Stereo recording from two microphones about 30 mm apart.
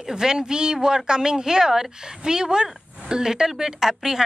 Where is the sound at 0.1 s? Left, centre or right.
Right.